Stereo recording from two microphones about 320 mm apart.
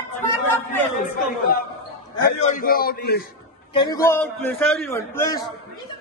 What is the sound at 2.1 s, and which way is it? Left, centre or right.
A man's voice, left.